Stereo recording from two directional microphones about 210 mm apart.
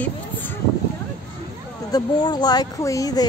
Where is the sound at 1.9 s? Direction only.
20° left (ahead or behind).